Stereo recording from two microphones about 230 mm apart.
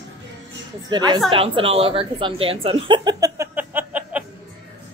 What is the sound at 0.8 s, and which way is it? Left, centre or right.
A woman's voice, centre.